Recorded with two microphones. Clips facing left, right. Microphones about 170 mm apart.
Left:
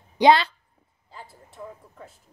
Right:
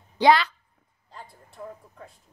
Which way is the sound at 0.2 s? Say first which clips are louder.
Left 2 dB; 25° left (ahead or behind).